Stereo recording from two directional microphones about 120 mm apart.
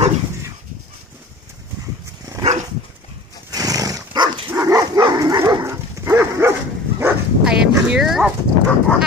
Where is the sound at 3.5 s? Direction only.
30° right (ahead or behind).